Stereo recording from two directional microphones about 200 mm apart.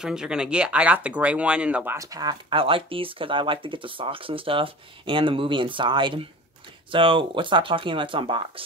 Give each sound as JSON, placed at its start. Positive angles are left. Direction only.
{"t": 0.0, "sound": "speech", "side_deg": -5}